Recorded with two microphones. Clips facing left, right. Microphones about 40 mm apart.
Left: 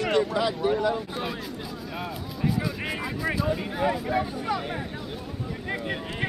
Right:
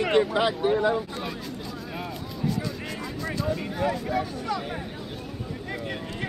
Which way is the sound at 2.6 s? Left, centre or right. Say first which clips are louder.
Left 3 dB; centre.